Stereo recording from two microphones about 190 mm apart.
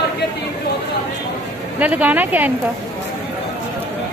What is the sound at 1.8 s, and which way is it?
Speech, 5° right (ahead or behind).